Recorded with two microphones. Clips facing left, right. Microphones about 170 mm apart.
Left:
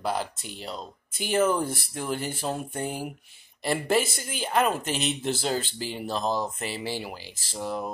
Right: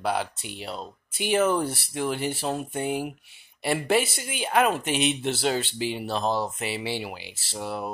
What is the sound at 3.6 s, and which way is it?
Speech, 5° right (ahead or behind).